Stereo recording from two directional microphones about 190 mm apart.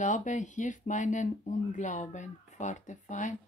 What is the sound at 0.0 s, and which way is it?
Speech, 40° left (ahead or behind).